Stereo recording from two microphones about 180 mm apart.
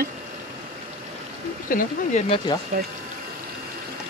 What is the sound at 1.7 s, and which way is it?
Speech, 50° left (ahead or behind).